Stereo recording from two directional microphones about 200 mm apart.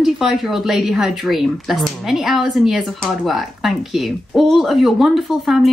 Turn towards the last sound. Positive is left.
turn(degrees=0)  # may be behind; listen again after turning